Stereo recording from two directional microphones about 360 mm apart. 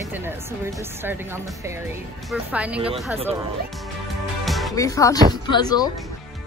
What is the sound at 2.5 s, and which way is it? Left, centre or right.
Speech, centre.